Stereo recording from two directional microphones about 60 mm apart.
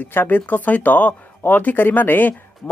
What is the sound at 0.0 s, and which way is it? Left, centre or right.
Speech, left.